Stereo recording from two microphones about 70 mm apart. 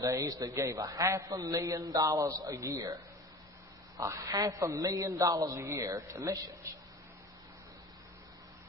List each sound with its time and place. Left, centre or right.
0.0 s a man's voice: right
3.9 s a man's voice: right
5.6 s a man's voice: right